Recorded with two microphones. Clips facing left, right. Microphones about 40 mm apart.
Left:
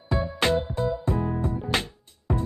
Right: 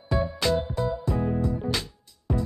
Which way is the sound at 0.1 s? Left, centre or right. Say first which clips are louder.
Left 1 dB; left.